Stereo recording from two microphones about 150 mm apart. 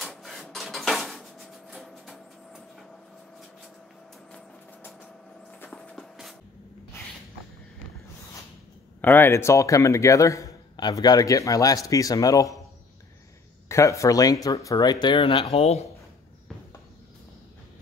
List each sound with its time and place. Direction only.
0.0 s printer: centre (ahead or behind)
4.3 s vehicle: 10° left (ahead or behind)
5.7 s shuffle: 5° left (ahead or behind)
9.0 s a man's voice: 15° left (ahead or behind)
13.7 s a man's voice: 20° left (ahead or behind); by 15.9 s 45° left (ahead or behind)